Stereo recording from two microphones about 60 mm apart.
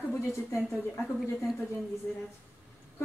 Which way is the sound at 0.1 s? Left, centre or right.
Left.